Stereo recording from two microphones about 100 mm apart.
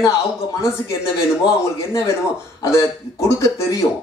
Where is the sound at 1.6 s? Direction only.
30° left (ahead or behind).